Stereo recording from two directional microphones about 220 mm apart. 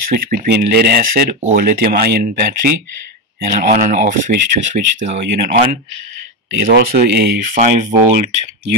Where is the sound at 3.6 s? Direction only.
35° right (ahead or behind).